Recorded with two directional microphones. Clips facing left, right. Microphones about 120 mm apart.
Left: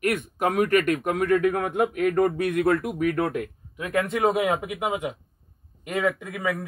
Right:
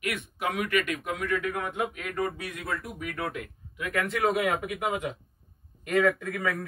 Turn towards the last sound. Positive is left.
turn(degrees=20)  # may be behind; listen again after turning